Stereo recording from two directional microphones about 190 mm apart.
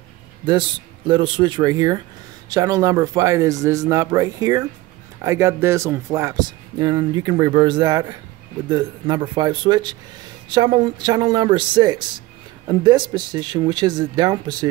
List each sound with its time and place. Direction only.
0.5 s speech: 25° right (ahead or behind)